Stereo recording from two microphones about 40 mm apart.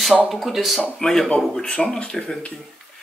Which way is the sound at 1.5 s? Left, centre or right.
Left.